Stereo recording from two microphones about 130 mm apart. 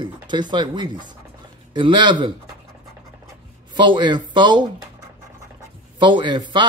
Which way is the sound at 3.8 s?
35° right (ahead or behind).